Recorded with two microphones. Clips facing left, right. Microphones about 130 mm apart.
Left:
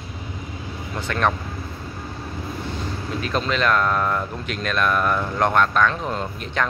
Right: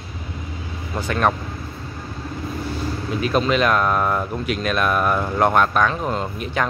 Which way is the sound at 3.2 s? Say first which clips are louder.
Right 4 dB; 10° right (ahead or behind).